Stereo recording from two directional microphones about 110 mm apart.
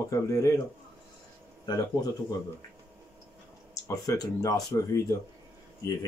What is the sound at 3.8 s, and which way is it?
Speech, 30° left (ahead or behind).